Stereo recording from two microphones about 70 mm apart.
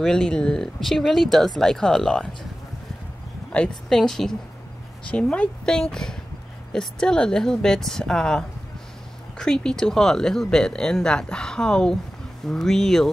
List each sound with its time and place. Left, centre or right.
0.0 s speech: centre
3.5 s speech: centre
5.1 s speech: centre